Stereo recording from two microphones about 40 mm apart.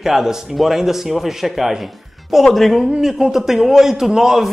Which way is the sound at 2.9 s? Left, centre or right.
Centre.